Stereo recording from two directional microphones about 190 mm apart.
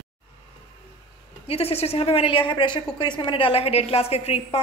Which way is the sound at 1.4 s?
30° left (ahead or behind).